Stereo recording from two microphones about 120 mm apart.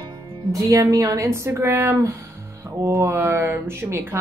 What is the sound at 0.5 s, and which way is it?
Speech, 30° right (ahead or behind).